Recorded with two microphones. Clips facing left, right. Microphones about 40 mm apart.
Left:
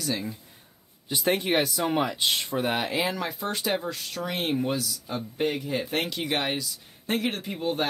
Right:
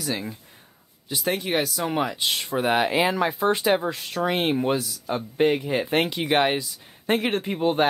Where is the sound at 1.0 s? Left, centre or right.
Centre.